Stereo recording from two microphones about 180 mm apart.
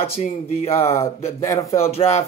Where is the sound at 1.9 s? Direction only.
35° left (ahead or behind).